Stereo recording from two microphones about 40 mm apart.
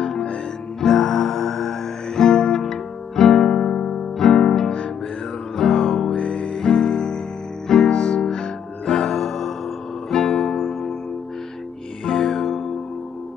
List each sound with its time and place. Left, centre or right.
0.0 s music: left
6.1 s music: left; by 11.0 s centre
12.0 s music: centre